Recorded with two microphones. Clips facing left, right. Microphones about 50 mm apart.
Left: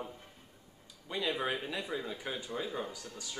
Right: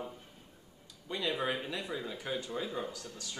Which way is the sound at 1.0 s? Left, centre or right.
Centre.